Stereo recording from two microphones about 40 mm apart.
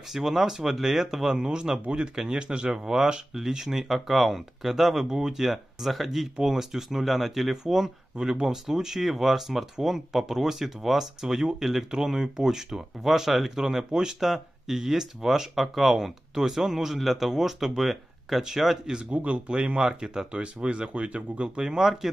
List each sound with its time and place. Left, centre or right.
0.1 s speech: centre
1.3 s speech: right
2.7 s speech: centre
19.0 s speech: right
19.5 s speech: right
20.3 s speech: right